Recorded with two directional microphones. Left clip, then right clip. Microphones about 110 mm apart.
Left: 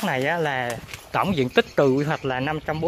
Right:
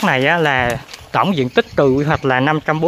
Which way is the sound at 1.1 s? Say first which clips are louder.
Right 6 dB; 10° right (ahead or behind).